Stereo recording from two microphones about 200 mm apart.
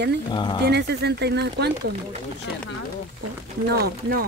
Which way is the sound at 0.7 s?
55° right (ahead or behind).